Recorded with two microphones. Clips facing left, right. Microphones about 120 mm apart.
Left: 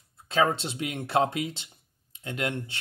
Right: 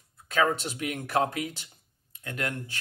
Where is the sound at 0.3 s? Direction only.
25° left (ahead or behind).